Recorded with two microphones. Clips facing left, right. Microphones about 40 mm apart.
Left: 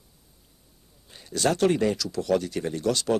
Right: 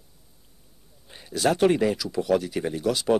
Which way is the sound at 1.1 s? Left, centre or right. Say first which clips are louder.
Right 2 dB; centre.